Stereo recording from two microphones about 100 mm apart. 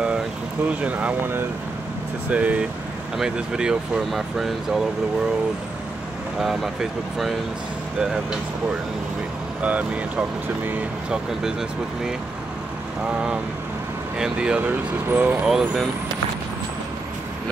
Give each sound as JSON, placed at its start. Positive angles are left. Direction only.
{"t": 0.7, "sound": "speech", "side_deg": -15}
{"t": 6.4, "sound": "speech", "side_deg": 0}
{"t": 9.6, "sound": "speech", "side_deg": -15}
{"t": 14.1, "sound": "speech", "side_deg": -5}